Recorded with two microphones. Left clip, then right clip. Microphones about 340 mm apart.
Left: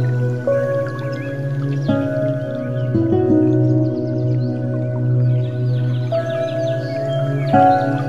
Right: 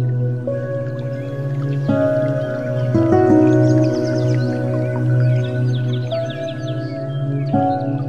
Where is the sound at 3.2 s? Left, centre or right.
Right.